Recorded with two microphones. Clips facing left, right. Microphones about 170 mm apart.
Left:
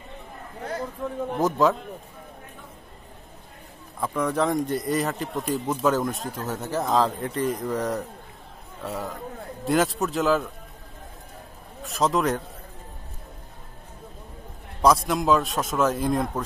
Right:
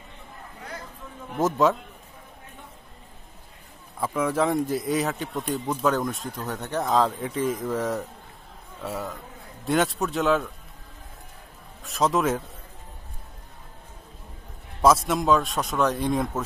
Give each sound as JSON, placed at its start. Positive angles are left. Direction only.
{"t": 1.0, "sound": "a man's voice", "side_deg": 60}
{"t": 1.4, "sound": "speech", "side_deg": 0}
{"t": 4.0, "sound": "speech", "side_deg": -5}
{"t": 11.8, "sound": "speech", "side_deg": 0}
{"t": 14.8, "sound": "speech", "side_deg": 0}